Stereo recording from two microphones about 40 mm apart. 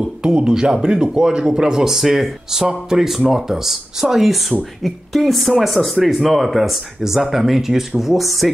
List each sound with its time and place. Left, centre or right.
0.0 s speech: right; by 8.5 s centre